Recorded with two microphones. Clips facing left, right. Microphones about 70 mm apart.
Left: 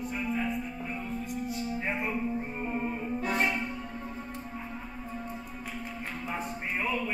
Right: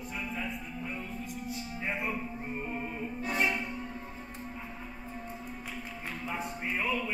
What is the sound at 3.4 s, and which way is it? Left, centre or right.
Music, centre.